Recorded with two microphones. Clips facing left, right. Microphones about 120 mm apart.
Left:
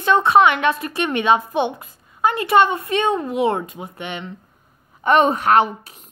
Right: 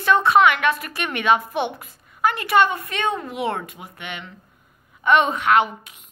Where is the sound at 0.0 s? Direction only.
20° left (ahead or behind).